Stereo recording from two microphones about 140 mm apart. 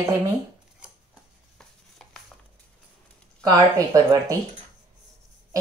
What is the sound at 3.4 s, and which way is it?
Speech, 25° right (ahead or behind).